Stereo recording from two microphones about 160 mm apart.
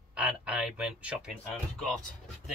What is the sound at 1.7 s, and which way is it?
Speech, 5° left (ahead or behind).